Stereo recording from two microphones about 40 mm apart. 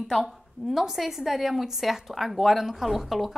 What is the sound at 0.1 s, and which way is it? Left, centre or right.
A woman's voice, centre.